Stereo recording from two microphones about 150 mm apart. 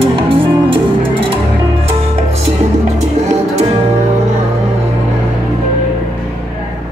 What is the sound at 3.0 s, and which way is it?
Music, 50° right (ahead or behind).